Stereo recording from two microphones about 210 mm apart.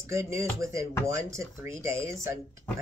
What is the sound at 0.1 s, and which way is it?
Speech, 15° right (ahead or behind).